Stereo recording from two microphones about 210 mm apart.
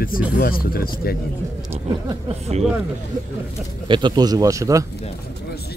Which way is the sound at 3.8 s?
20° right (ahead or behind).